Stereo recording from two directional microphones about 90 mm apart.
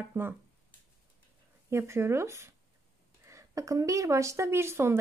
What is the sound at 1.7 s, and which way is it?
A woman's voice, 30° right (ahead or behind).